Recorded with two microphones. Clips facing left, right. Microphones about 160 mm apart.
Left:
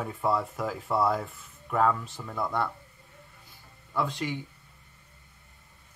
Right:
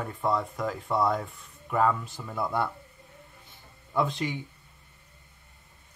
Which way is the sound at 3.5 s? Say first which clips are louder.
Right 3 dB; 20° right (ahead or behind).